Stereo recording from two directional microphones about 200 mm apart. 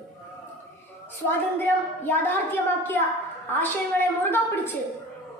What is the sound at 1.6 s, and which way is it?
A woman's voice, 10° left (ahead or behind).